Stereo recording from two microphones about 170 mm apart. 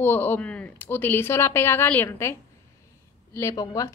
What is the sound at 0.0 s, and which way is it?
Speech, 10° left (ahead or behind).